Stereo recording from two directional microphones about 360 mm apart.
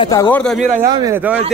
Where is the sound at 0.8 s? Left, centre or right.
Centre.